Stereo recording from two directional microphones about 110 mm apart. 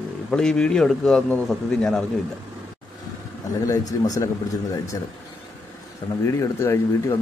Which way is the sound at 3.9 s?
30° left (ahead or behind).